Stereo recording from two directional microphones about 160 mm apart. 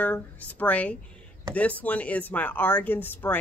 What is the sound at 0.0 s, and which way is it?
Speech, 10° left (ahead or behind).